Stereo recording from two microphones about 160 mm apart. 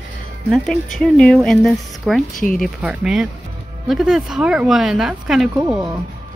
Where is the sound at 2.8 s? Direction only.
5° right (ahead or behind).